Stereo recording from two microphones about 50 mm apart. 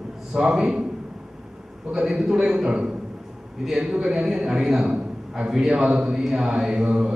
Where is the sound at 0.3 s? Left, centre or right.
Centre.